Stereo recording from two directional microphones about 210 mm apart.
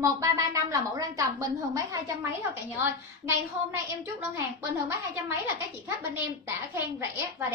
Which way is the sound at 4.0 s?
10° right (ahead or behind).